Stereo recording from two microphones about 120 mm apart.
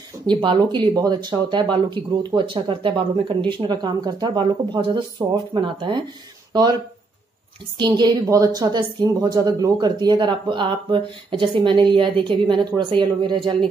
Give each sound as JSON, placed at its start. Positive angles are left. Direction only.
{"t": 0.3, "sound": "speech", "side_deg": -40}
{"t": 7.8, "sound": "a woman's voice", "side_deg": -35}